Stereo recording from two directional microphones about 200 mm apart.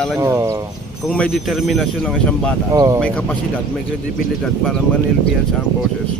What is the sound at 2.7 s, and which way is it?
Speech, 15° right (ahead or behind).